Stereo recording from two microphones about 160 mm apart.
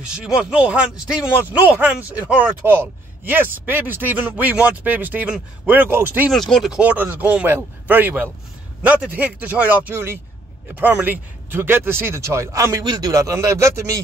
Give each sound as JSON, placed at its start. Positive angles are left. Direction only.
{"t": 0.0, "sound": "speech", "side_deg": -5}
{"t": 6.3, "sound": "speech", "side_deg": 0}